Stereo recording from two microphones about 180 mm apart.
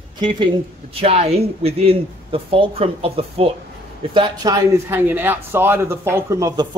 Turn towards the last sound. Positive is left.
turn(degrees=-15)  # may be behind; listen again after turning